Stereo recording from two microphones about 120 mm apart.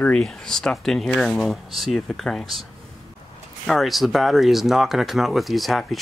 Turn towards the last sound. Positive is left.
turn(degrees=0)  # may be behind; listen again after turning